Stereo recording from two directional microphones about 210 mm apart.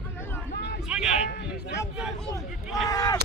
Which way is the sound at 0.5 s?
50° left (ahead or behind).